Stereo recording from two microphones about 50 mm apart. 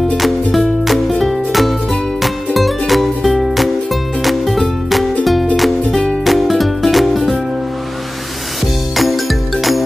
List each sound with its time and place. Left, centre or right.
0.2 s music: centre
8.9 s music: centre